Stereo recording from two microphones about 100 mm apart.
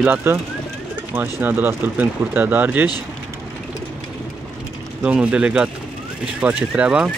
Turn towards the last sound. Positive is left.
turn(degrees=-10)  # may be behind; listen again after turning